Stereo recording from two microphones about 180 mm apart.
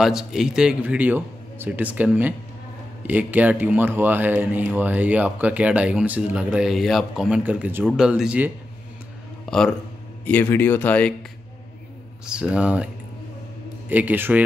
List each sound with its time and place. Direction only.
0.0 s speech: 5° right (ahead or behind)
9.5 s speech: 5° left (ahead or behind)
12.3 s speech: 5° right (ahead or behind)